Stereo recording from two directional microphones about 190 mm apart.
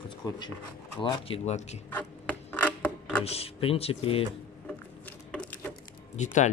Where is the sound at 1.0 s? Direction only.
25° left (ahead or behind).